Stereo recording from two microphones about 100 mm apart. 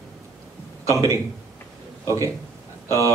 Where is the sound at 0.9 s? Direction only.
30° right (ahead or behind).